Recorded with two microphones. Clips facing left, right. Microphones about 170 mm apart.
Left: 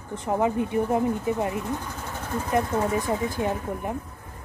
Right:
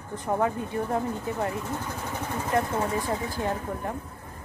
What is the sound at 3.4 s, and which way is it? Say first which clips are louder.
Speech: left 2 dB; 20° left (ahead or behind).